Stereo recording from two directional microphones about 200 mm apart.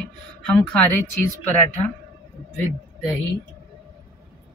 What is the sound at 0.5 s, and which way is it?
Speech, 5° left (ahead or behind).